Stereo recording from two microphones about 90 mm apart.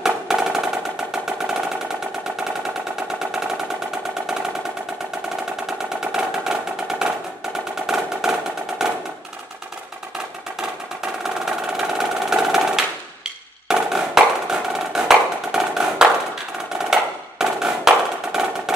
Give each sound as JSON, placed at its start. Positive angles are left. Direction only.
{"t": 0.0, "sound": "percussion", "side_deg": -5}
{"t": 1.1, "sound": "engine", "side_deg": -5}
{"t": 3.2, "sound": "a sound", "side_deg": -5}
{"t": 5.7, "sound": "percussion", "side_deg": -5}
{"t": 11.2, "sound": "percussion", "side_deg": -5}
{"t": 16.7, "sound": "music", "side_deg": -5}